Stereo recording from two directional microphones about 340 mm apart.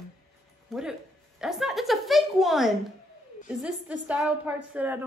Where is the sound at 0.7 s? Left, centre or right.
Centre.